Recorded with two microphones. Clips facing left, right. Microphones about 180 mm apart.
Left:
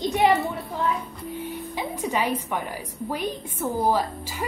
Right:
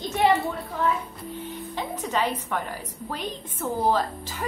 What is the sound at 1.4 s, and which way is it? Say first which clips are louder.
A woman's voice: left 1 dB; 10° left (ahead or behind).